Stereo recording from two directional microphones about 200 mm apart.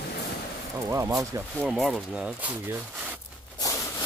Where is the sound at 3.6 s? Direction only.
15° left (ahead or behind).